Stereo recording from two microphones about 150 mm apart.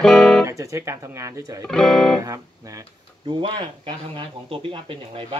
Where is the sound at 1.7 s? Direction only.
5° left (ahead or behind).